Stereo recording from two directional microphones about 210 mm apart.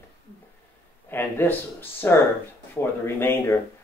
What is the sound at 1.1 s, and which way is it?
Speech, 10° left (ahead or behind).